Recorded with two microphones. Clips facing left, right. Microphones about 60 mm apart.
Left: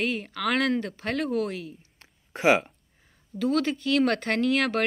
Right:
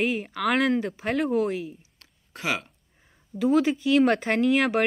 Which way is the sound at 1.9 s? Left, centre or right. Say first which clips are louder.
Left 5 dB; left.